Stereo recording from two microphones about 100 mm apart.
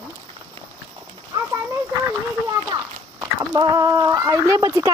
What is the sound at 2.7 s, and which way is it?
A child's voice, 45° right (ahead or behind).